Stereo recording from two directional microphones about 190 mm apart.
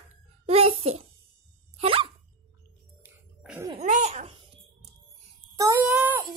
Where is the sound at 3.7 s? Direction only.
35° right (ahead or behind).